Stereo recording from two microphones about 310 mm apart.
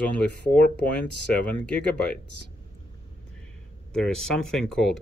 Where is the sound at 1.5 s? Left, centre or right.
Centre.